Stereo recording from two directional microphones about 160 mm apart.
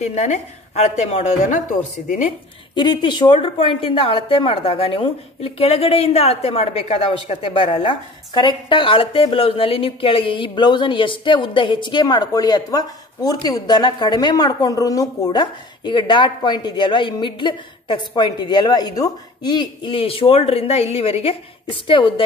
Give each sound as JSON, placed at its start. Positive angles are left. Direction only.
{"t": 0.0, "sound": "a woman's voice", "side_deg": 45}
{"t": 2.7, "sound": "a woman's voice", "side_deg": 30}